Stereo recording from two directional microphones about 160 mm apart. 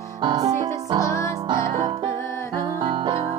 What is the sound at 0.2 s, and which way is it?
Music, 25° right (ahead or behind).